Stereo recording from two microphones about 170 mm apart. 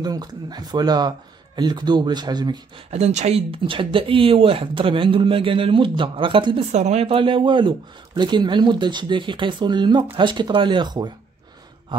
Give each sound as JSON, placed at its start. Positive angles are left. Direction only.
{"t": 0.0, "sound": "speech", "side_deg": -25}
{"t": 2.9, "sound": "speech", "side_deg": -40}
{"t": 6.7, "sound": "speech", "side_deg": -40}